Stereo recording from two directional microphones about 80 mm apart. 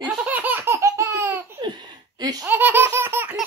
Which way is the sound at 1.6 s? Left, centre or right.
Right.